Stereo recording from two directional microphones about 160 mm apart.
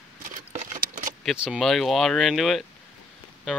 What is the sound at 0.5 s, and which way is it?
Patter, 50° right (ahead or behind).